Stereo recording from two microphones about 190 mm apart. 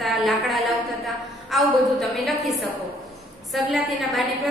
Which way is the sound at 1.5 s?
Centre (ahead or behind).